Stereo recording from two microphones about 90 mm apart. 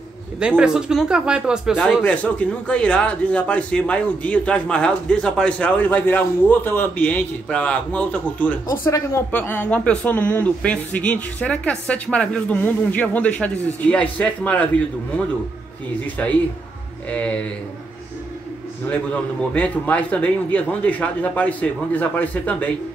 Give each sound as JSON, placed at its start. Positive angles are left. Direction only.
{"t": 0.4, "sound": "speech", "side_deg": -10}
{"t": 2.0, "sound": "a man's voice", "side_deg": 15}
{"t": 16.2, "sound": "a man's voice", "side_deg": 15}
{"t": 19.5, "sound": "a man's voice", "side_deg": 15}